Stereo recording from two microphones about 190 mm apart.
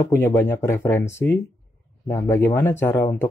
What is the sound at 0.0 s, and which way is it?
Speech, 15° left (ahead or behind).